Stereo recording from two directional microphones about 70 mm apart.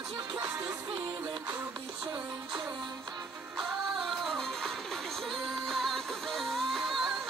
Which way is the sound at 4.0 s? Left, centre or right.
Centre.